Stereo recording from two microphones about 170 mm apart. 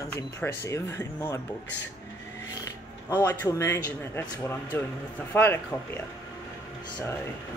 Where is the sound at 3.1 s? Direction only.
20° left (ahead or behind).